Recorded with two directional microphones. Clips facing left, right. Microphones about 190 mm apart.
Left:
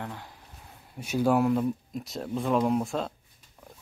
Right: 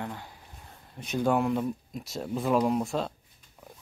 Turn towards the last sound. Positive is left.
turn(degrees=0)  # may be behind; listen again after turning